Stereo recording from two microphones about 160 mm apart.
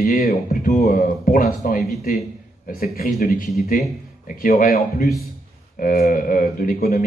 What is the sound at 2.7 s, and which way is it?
Speech, 65° left (ahead or behind).